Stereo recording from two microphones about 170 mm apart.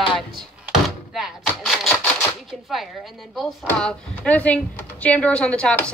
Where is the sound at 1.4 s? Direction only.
5° left (ahead or behind).